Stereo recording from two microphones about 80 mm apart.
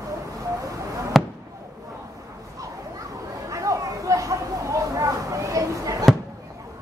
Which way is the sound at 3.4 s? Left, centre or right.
Right.